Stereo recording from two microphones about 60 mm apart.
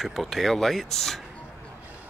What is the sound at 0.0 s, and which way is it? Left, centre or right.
Speech, centre.